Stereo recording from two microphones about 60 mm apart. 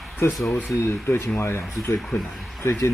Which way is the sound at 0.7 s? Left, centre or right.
Left.